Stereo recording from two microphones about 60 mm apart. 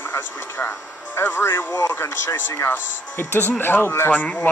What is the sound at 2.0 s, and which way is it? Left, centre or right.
Speech, left.